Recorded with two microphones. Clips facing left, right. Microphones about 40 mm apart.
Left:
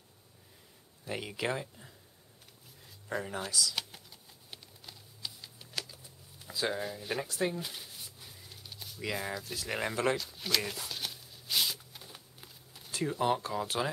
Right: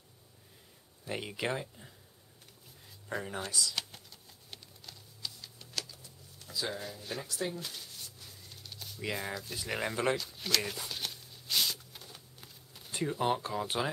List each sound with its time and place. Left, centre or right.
1.0 s speech: centre
3.1 s speech: centre
3.7 s computer keyboard: centre
5.8 s a sound: centre
6.7 s speech: centre
7.6 s a sound: centre
13.0 s speech: centre